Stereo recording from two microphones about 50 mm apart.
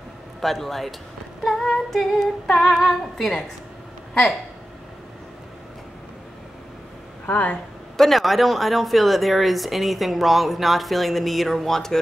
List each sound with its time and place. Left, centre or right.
0.4 s a woman's voice: centre
1.4 s female singing: centre
4.1 s speech: centre
7.2 s speech: left
8.0 s a woman's voice: centre